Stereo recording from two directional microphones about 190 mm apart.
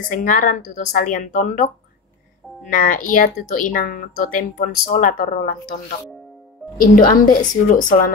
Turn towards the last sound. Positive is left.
turn(degrees=45)  # may be behind; listen again after turning